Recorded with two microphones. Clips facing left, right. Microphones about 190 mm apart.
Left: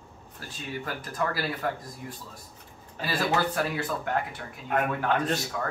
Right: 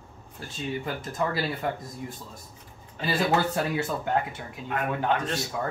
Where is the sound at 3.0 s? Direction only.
25° right (ahead or behind).